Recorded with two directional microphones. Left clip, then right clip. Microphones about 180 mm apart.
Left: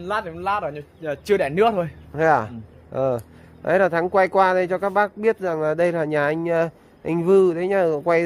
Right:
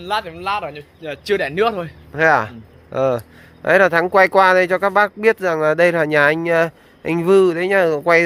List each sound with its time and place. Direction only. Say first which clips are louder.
0.0 s speech: right 3 dB; 65° left (ahead or behind); by 2.0 s 85° left
2.1 s speech: right 4 dB; 10° left (ahead or behind)